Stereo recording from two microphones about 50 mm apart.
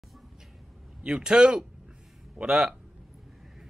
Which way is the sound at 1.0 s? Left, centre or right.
Centre.